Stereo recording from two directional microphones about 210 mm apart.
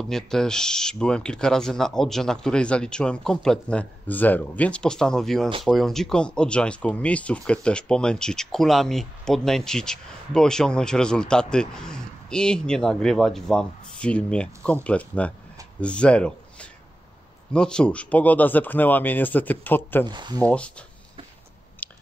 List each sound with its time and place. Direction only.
0.0 s a man's voice: centre (ahead or behind)
20.1 s speech: 20° right (ahead or behind)
21.8 s chewing: 10° left (ahead or behind)